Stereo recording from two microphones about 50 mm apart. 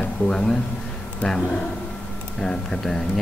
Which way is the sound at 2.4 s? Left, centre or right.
Centre.